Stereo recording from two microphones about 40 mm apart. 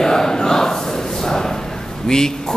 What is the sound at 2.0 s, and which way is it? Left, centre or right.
Speech, centre.